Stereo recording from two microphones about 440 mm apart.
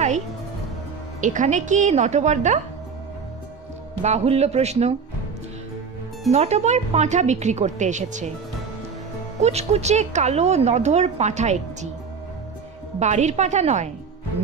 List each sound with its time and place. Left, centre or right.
1.2 s a woman's voice: centre
4.0 s a woman's voice: centre
6.3 s a woman's voice: centre
9.4 s a woman's voice: centre
13.0 s a woman's voice: centre